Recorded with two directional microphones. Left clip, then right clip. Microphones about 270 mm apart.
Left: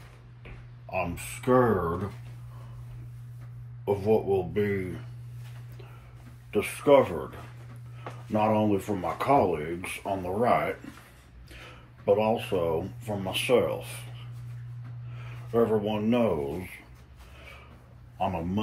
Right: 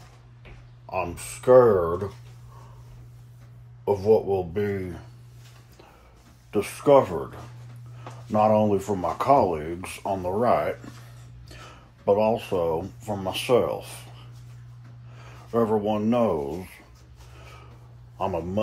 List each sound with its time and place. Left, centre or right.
0.8 s speech: centre
3.8 s speech: centre
6.5 s speech: centre
15.1 s speech: centre